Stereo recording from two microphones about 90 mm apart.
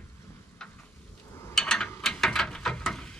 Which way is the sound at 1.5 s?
5° left (ahead or behind).